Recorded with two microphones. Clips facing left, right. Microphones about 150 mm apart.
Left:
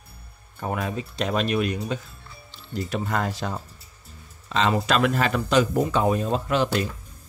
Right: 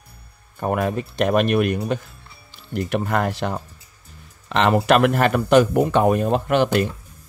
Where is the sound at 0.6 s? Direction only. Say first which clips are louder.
Right 6 dB; 55° right (ahead or behind).